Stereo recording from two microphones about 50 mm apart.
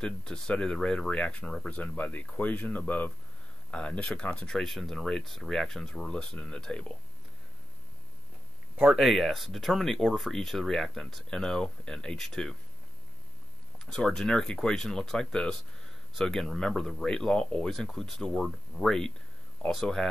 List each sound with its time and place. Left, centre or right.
0.0 s speech: centre
4.6 s speech: centre
8.9 s speech: centre
14.0 s speech: centre
16.2 s speech: centre
17.6 s speech: centre